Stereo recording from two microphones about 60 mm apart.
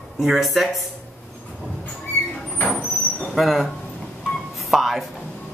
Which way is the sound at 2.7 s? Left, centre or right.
Centre.